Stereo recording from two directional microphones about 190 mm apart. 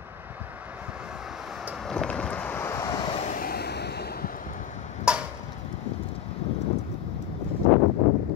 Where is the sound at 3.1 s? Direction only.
40° left (ahead or behind).